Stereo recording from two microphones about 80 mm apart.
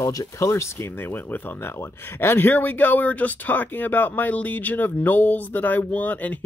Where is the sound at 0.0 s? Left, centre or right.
Left.